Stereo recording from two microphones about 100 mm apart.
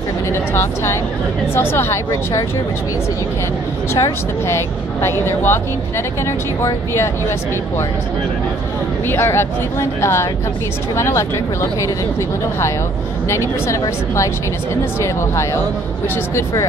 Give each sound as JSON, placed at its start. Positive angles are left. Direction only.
{"t": 0.3, "sound": "speech", "side_deg": 25}
{"t": 3.9, "sound": "speech", "side_deg": 30}
{"t": 9.0, "sound": "speech", "side_deg": 20}